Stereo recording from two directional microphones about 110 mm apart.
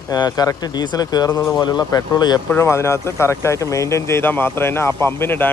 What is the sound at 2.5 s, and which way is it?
Speech, 25° left (ahead or behind).